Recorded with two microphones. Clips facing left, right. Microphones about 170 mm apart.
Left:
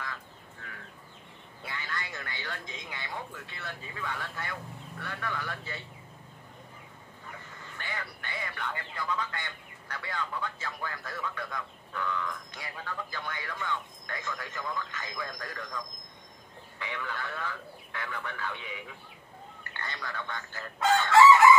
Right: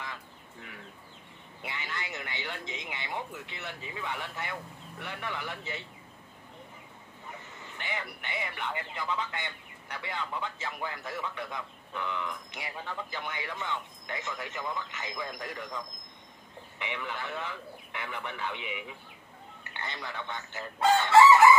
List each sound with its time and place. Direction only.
0.6 s bird: 15° right (ahead or behind)
1.6 s a man's voice: 20° right (ahead or behind)
7.5 s a man's voice: 20° right (ahead or behind)
16.7 s a man's voice: 20° right (ahead or behind)